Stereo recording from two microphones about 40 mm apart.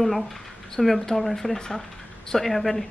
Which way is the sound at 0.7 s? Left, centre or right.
Centre.